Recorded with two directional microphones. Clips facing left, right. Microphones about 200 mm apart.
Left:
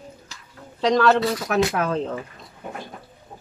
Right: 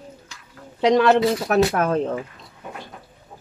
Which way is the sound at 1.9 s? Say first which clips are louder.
Right 3 dB; 50° right (ahead or behind).